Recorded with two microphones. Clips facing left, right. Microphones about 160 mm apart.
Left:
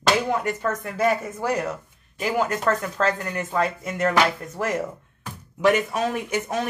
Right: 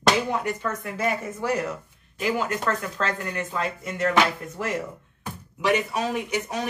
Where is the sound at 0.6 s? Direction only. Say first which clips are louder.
Left 4 dB; 40° left (ahead or behind).